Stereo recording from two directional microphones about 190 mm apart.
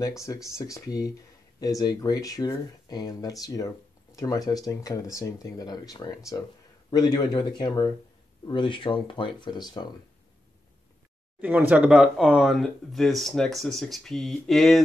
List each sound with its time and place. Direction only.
0.3 s speech: 15° left (ahead or behind)
11.4 s speech: 10° right (ahead or behind)